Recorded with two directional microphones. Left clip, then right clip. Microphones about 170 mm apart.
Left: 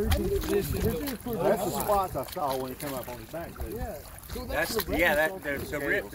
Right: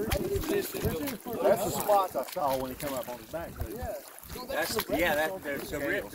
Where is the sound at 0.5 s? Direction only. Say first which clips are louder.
Left 2 dB; 30° right (ahead or behind).